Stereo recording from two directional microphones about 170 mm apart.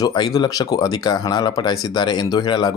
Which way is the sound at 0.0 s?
20° left (ahead or behind).